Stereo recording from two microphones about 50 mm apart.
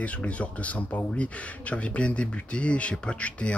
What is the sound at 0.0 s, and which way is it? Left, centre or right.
Speech, left.